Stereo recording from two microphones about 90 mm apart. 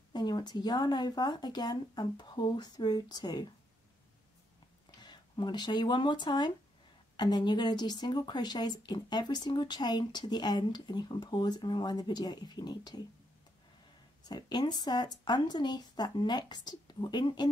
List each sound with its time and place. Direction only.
0.1 s speech: 50° left (ahead or behind)
5.0 s speech: 55° left (ahead or behind)
14.2 s speech: 50° left (ahead or behind)